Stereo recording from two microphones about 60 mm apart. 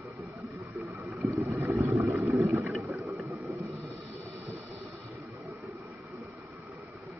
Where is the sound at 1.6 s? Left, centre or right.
Right.